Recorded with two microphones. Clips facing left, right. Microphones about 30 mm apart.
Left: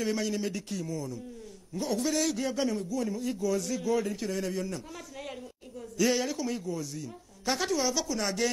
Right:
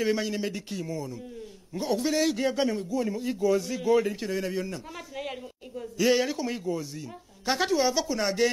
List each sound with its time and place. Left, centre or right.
0.0 s a man's voice: right